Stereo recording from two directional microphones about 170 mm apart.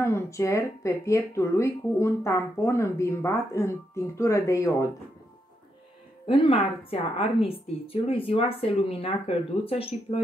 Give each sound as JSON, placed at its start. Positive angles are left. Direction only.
{"t": 0.0, "sound": "speech", "side_deg": 15}
{"t": 6.2, "sound": "a woman's voice", "side_deg": 35}